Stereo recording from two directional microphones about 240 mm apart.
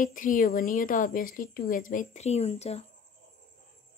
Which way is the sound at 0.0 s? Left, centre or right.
Left.